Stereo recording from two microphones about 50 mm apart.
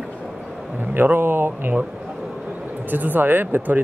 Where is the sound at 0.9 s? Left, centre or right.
Right.